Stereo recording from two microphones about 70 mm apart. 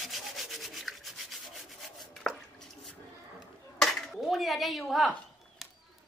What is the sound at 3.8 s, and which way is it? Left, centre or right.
Dishes, centre.